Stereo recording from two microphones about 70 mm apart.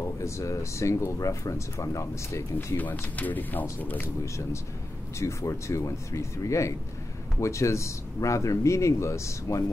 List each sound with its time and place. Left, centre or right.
0.0 s speech: left
2.8 s speech: left
5.2 s speech: left